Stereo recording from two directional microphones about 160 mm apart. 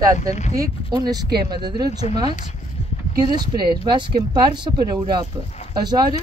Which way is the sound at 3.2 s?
25° right (ahead or behind).